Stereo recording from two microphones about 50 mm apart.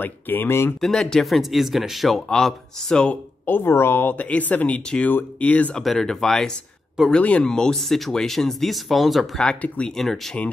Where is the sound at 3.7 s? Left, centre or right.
Left.